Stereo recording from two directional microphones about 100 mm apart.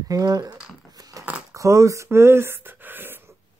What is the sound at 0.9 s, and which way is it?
Biting, 35° right (ahead or behind).